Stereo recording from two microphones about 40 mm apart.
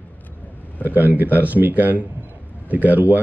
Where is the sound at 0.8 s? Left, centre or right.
Right.